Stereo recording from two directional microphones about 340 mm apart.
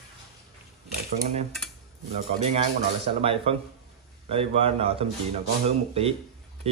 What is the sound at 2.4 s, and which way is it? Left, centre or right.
A man's voice, centre.